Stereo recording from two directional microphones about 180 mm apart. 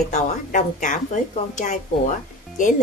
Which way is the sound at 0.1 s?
45° left (ahead or behind).